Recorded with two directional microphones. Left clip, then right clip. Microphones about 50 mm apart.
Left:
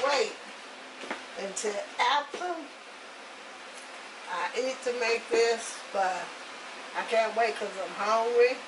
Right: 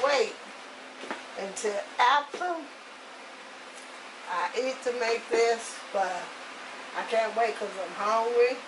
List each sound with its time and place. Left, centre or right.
0.0 s a sound: right
1.5 s speech: right
4.3 s speech: right